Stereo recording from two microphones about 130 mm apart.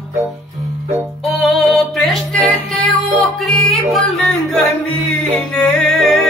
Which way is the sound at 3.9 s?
5° left (ahead or behind).